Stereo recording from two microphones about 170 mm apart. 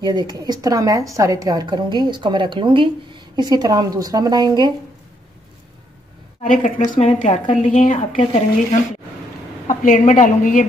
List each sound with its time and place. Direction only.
0.0 s a woman's voice: 25° right (ahead or behind)
6.5 s a woman's voice: 50° left (ahead or behind)
9.7 s a woman's voice: 50° left (ahead or behind)